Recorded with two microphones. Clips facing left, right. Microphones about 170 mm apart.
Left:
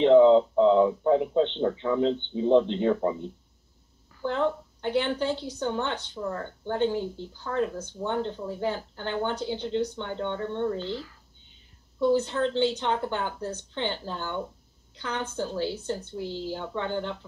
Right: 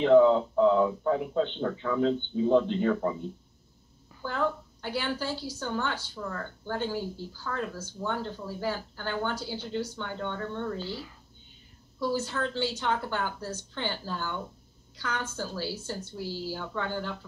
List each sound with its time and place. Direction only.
0.0 s speech: 25° left (ahead or behind)
4.2 s a woman's voice: 25° left (ahead or behind)
10.8 s speech: 10° right (ahead or behind)
12.3 s speech: 20° left (ahead or behind)